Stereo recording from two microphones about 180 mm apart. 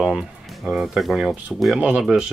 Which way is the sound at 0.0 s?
Centre (ahead or behind).